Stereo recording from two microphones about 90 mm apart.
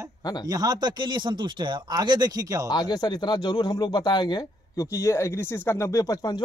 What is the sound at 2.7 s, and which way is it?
Speech, 50° left (ahead or behind).